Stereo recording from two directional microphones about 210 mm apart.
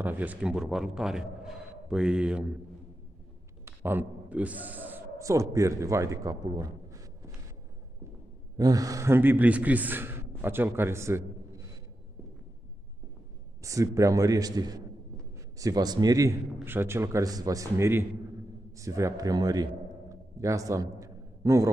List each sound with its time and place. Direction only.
0.0 s a man's voice: 10° right (ahead or behind)
3.6 s a man's voice: 10° right (ahead or behind)
8.5 s a man's voice: 15° right (ahead or behind)
13.6 s a man's voice: 15° right (ahead or behind)